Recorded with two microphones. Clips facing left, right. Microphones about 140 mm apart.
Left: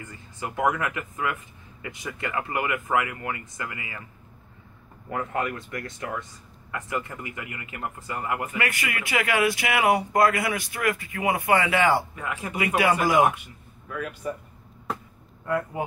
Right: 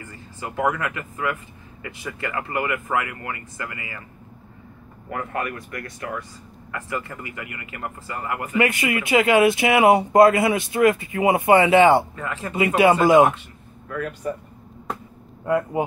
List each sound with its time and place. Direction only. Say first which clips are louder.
0.0 s speech: right 1 dB; 15° left (ahead or behind)
5.1 s speech: even; 20° left (ahead or behind)
8.5 s speech: right 8 dB; 20° right (ahead or behind)
12.2 s speech: right 2 dB; 15° left (ahead or behind)
12.5 s speech: right 6 dB; 25° right (ahead or behind)
13.3 s a sound: right 3 dB; 10° left (ahead or behind)
15.4 s speech: right 6 dB; 20° right (ahead or behind)